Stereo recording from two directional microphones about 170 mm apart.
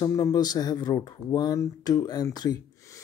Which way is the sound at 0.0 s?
20° left (ahead or behind).